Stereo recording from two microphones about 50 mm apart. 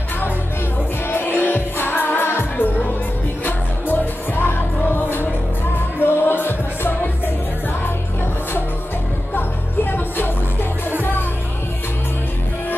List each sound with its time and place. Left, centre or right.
1.0 s music: left
2.5 s music: left
9.8 s music: left